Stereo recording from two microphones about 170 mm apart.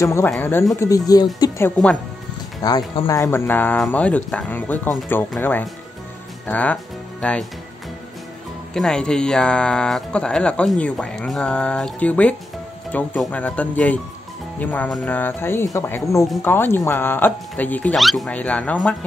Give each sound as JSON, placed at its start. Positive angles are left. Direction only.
{"t": 0.0, "sound": "speech", "side_deg": 15}
{"t": 8.7, "sound": "speech", "side_deg": 5}